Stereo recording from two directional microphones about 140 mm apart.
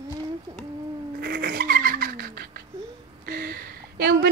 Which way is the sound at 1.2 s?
90° right.